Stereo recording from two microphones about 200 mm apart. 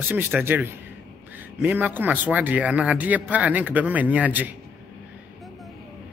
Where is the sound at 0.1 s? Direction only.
10° right (ahead or behind).